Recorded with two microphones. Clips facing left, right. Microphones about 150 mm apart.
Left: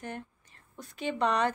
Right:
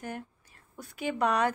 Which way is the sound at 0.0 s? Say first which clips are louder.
Right 1 dB; 5° right (ahead or behind).